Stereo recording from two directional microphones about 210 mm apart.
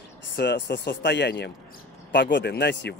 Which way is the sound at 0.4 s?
55° left (ahead or behind).